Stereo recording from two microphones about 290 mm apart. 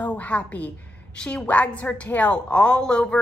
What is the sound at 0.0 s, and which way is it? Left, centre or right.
A woman's voice, centre.